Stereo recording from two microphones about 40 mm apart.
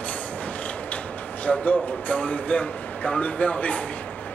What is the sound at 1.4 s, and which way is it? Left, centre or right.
A man's voice, left.